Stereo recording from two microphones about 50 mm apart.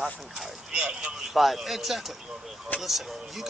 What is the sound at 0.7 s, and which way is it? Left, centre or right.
Speech, right.